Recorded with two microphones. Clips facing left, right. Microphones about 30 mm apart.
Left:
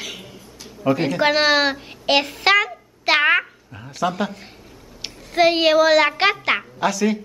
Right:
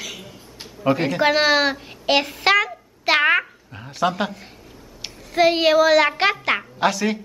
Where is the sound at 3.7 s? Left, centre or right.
Centre.